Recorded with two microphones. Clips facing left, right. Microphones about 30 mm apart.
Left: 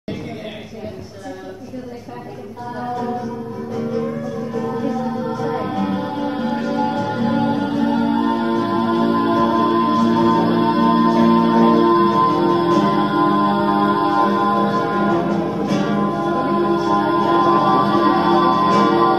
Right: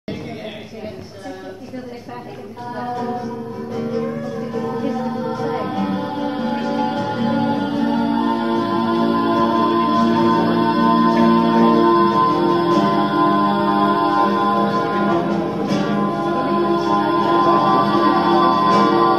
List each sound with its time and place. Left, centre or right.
3.7 s music: centre